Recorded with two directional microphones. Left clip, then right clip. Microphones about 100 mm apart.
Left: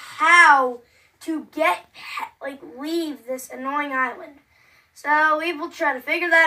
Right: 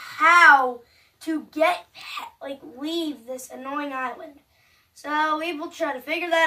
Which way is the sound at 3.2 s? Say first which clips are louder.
Left 5 dB; 15° right (ahead or behind).